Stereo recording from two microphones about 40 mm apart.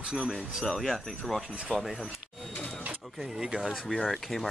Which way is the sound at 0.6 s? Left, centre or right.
Centre.